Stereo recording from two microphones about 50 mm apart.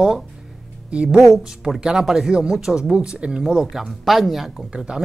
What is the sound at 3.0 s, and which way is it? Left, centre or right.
Speech, right.